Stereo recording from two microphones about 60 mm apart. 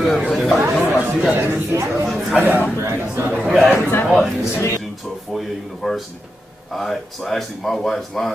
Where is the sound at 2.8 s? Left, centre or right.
Right.